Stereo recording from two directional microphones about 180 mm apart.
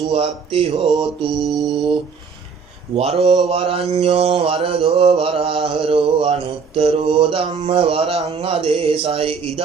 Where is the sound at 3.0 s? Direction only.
35° right (ahead or behind).